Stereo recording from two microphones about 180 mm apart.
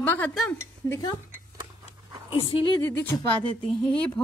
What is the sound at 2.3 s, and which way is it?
Speech, 30° left (ahead or behind).